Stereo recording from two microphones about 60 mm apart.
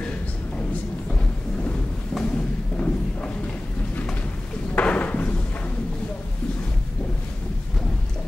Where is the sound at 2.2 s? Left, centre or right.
Left.